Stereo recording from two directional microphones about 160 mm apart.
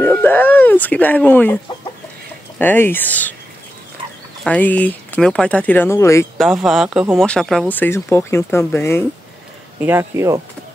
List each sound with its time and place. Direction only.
0.0 s a sound: 10° left (ahead or behind)
2.6 s speech: 10° left (ahead or behind)
4.5 s speech: 10° left (ahead or behind)
6.3 s speech: centre (ahead or behind); by 9.0 s 15° left (ahead or behind)
9.8 s speech: 15° right (ahead or behind)